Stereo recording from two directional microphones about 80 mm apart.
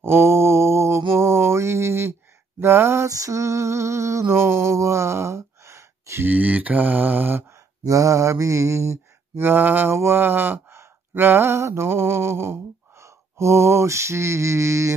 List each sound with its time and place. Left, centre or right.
0.0 s mantra: right
2.6 s a sound: right
6.2 s mantra: right
7.8 s mantra: right
9.9 s speech: right